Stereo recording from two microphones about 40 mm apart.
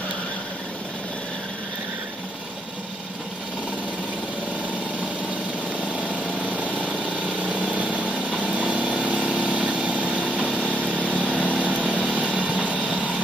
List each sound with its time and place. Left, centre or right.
6.8 s vehicle: right
10.5 s vehicle: left
12.4 s train: right